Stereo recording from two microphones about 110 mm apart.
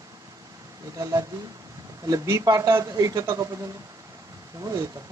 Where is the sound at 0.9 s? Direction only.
35° right (ahead or behind).